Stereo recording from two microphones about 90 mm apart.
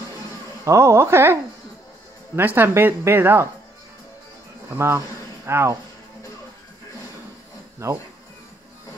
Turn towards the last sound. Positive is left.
turn(degrees=-30)  # may be behind; listen again after turning